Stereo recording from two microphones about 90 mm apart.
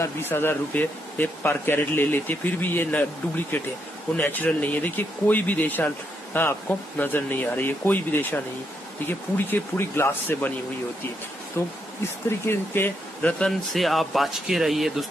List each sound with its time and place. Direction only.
0.0 s speech: 25° left (ahead or behind)
9.5 s speech: 25° left (ahead or behind)
11.6 s speech: 30° left (ahead or behind)
13.5 s speech: centre (ahead or behind)